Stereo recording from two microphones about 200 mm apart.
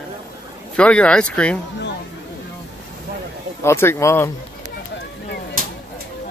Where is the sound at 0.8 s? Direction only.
5° left (ahead or behind).